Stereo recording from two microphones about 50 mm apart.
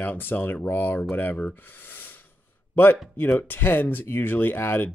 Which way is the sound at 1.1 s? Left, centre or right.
Left.